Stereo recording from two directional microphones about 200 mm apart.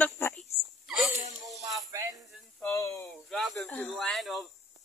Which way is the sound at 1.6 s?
15° right (ahead or behind).